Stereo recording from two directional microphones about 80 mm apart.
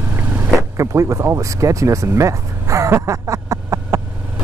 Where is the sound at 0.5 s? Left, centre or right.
Right.